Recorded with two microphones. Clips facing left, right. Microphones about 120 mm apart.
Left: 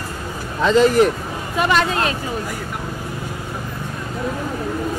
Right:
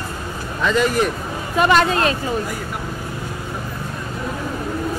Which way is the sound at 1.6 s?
50° right (ahead or behind).